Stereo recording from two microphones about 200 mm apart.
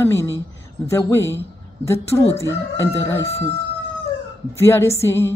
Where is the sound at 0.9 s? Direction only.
15° left (ahead or behind).